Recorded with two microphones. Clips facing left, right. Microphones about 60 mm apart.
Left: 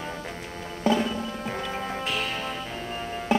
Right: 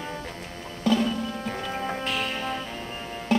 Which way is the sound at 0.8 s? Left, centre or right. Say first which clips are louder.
Even; centre.